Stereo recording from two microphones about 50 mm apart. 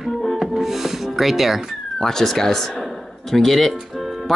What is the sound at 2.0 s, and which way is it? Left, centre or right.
Speech, centre.